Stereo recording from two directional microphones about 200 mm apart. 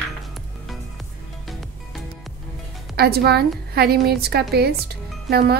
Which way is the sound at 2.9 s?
50° right (ahead or behind).